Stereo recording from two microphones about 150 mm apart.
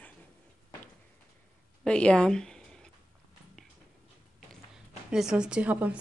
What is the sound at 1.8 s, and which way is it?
Speech, 5° left (ahead or behind).